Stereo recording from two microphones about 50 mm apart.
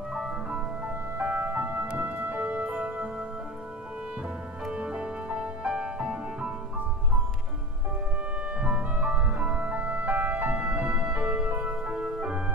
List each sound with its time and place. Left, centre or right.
0.1 s music: centre
4.6 s music: centre
8.5 s music: right
11.1 s music: right; by 12.5 s centre